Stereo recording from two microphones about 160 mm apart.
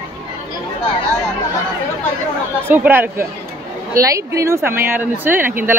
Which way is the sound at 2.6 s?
10° right (ahead or behind).